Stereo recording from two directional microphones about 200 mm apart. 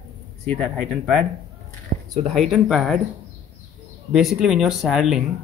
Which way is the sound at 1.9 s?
35° right (ahead or behind).